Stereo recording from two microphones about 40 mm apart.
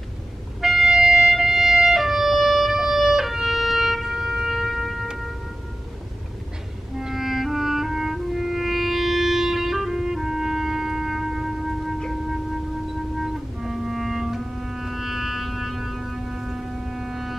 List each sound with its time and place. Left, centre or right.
0.6 s music: centre
2.7 s music: centre
7.0 s clarinet: centre
13.2 s clarinet: centre